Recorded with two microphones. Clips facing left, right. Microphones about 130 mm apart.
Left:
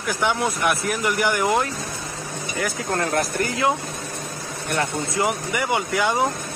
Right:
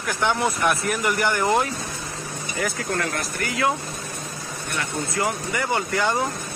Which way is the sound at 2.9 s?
35° left (ahead or behind).